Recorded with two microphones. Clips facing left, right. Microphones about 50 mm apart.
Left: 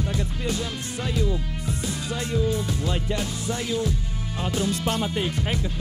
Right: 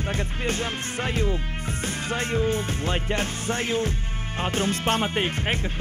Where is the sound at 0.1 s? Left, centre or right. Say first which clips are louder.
Right 1 dB; right.